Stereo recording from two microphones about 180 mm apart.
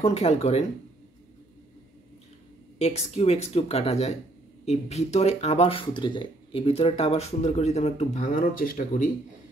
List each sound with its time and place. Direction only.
0.0 s speech: 35° left (ahead or behind)
2.8 s speech: 35° left (ahead or behind)